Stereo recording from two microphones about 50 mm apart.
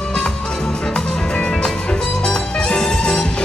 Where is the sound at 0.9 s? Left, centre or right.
Left.